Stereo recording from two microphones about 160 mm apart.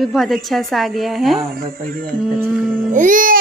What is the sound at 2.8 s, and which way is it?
Speech, 55° right (ahead or behind).